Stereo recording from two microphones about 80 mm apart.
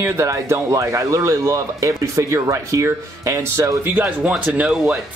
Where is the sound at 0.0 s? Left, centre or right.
Right.